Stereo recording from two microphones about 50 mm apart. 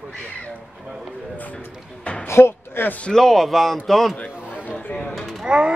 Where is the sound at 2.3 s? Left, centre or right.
Left.